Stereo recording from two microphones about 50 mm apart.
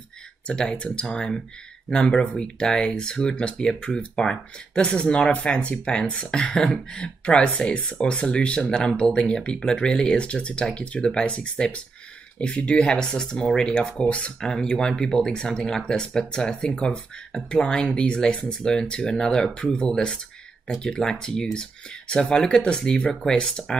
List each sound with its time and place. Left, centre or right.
0.5 s speech: centre
14.5 s speech: centre